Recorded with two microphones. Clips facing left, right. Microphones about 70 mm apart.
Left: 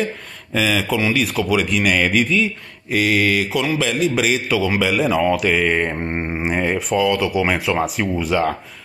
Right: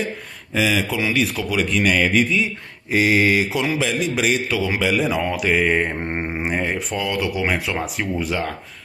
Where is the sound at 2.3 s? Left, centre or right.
Centre.